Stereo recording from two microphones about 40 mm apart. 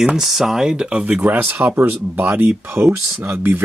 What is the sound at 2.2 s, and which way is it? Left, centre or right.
Speech, right.